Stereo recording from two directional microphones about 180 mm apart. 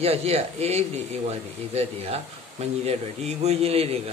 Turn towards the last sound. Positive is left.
turn(degrees=-35)  # may be behind; listen again after turning